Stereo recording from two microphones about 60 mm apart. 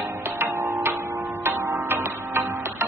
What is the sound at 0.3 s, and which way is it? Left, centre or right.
Music, right.